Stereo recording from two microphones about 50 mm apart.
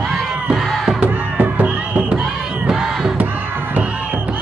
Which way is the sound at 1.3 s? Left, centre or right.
Right.